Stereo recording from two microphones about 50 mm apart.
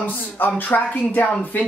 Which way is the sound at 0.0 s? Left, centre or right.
Left.